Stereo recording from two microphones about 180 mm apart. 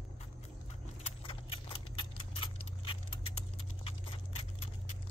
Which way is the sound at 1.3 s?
30° left (ahead or behind).